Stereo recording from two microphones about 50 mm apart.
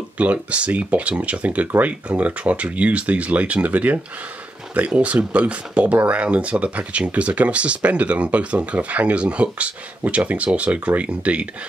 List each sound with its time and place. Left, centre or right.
0.2 s speech: right